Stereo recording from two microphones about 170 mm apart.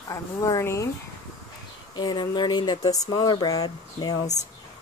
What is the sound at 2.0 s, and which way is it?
Speech, 25° left (ahead or behind).